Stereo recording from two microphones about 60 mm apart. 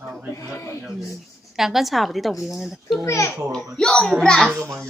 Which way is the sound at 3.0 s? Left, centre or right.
Left.